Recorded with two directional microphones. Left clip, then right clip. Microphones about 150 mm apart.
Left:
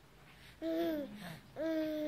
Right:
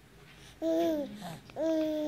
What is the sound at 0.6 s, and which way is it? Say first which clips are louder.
Babbling: right 7 dB; centre (ahead or behind).